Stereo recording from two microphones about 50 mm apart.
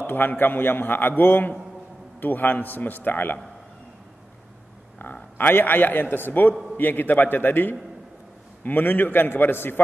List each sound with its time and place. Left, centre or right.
0.0 s a man's voice: left
5.0 s a man's voice: left